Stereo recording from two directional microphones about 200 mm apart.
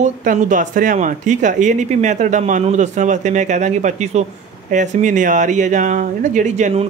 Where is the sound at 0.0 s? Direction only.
40° right (ahead or behind).